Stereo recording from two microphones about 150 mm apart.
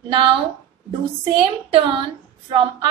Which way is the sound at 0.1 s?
35° right (ahead or behind).